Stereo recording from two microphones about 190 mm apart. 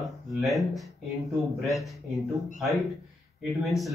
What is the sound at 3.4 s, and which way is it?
Speech, centre (ahead or behind).